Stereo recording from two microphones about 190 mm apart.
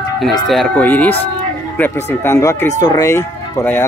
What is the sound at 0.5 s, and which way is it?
Speech, 5° left (ahead or behind).